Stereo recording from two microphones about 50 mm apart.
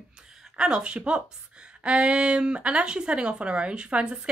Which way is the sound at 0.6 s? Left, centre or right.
Centre.